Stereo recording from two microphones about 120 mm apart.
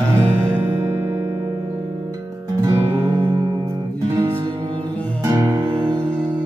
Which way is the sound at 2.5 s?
25° right (ahead or behind).